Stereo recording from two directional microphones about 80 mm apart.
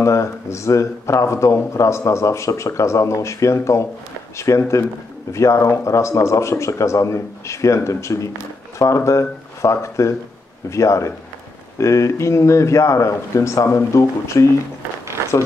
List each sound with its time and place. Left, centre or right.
0.0 s speech: left